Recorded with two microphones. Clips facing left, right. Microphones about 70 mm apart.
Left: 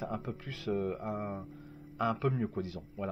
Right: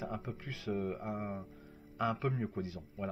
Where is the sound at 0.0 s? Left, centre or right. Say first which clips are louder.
Left 3 dB; left.